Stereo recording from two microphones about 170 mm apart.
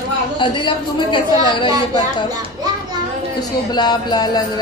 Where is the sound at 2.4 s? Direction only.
25° right (ahead or behind).